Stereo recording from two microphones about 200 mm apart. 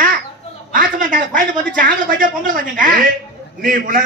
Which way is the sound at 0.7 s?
45° right (ahead or behind).